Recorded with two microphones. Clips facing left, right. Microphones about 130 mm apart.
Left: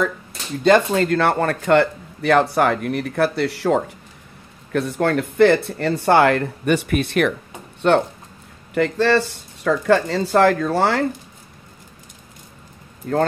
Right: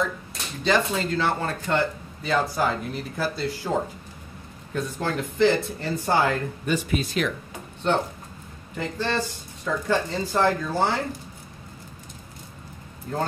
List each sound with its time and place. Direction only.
0.7 s speech: 60° left (ahead or behind)